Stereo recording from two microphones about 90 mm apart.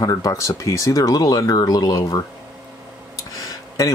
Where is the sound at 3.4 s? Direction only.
40° left (ahead or behind).